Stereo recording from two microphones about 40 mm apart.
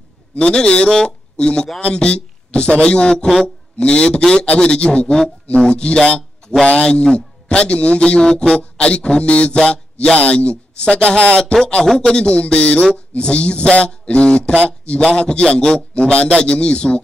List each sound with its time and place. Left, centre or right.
0.4 s a man's voice: left